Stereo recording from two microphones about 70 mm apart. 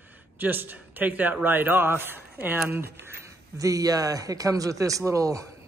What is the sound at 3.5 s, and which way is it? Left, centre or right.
Speech, right.